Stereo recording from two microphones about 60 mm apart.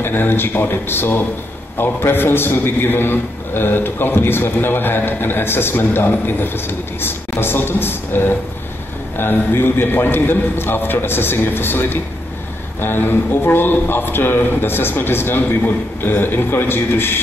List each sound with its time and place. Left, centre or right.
0.0 s a man's voice: left